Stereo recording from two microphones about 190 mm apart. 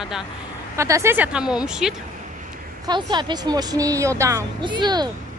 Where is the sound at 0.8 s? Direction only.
15° right (ahead or behind).